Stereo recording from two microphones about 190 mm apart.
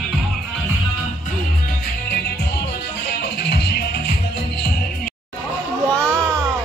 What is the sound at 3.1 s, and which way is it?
Music, 55° left (ahead or behind).